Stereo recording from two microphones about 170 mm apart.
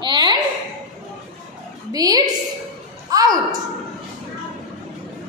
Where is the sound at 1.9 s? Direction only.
20° right (ahead or behind).